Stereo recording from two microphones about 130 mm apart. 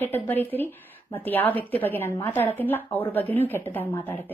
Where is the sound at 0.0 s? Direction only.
15° left (ahead or behind).